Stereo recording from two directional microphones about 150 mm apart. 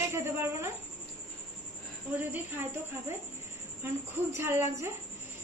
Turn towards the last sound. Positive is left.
turn(degrees=-15)  # may be behind; listen again after turning